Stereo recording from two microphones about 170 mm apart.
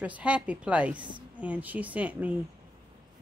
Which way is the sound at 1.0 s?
30° right (ahead or behind).